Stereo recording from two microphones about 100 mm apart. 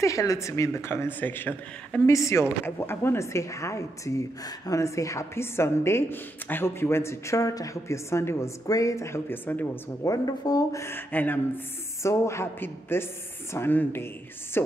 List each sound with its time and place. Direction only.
0.0 s a woman's voice: 35° left (ahead or behind)
2.0 s a woman's voice: 30° left (ahead or behind)
10.0 s a woman's voice: 40° left (ahead or behind); by 11.6 s 20° left (ahead or behind)
12.0 s a woman's voice: 30° left (ahead or behind)